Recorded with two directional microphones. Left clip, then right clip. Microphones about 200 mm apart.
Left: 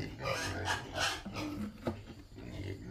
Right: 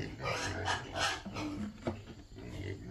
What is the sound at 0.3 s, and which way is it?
Dog, centre (ahead or behind).